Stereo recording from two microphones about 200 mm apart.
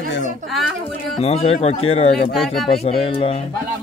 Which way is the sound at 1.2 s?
30° left (ahead or behind).